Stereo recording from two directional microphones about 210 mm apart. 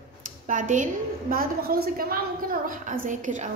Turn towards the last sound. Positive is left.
turn(degrees=-35)  # may be behind; listen again after turning